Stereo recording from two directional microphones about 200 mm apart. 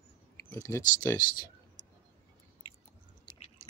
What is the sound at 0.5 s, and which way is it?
Speech, 15° left (ahead or behind).